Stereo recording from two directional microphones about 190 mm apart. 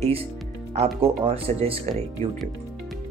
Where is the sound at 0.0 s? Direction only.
30° right (ahead or behind).